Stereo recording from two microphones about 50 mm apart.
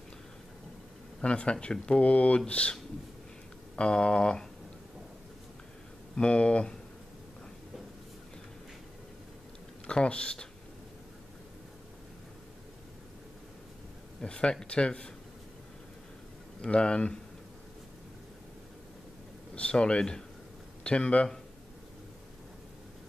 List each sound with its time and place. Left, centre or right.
1.2 s speech: left
6.1 s speech: left
9.8 s speech: left
14.2 s speech: centre
16.6 s speech: centre
19.5 s speech: left